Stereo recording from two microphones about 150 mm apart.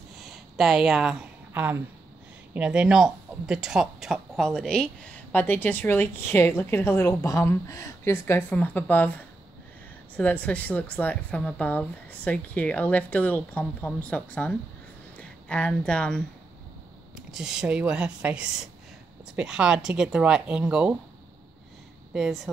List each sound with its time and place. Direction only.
0.2 s speech: centre (ahead or behind)
17.3 s speech: 5° right (ahead or behind)
22.1 s speech: centre (ahead or behind)